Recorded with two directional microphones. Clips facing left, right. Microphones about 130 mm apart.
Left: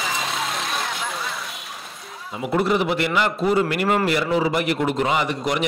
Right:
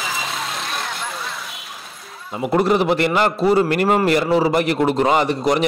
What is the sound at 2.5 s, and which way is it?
A man's voice, 40° right (ahead or behind).